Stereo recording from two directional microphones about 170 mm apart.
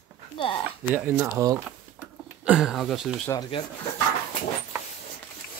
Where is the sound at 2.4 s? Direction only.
5° right (ahead or behind).